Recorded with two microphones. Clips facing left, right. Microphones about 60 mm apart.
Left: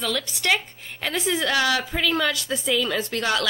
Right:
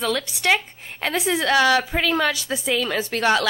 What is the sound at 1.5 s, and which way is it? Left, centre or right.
Speech, right.